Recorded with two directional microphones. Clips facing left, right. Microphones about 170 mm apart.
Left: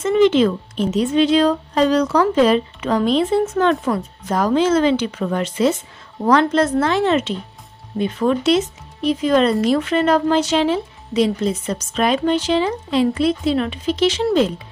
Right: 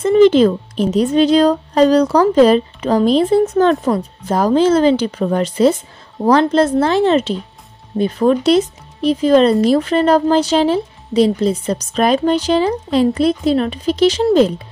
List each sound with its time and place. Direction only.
0.0 s speech: 35° right (ahead or behind)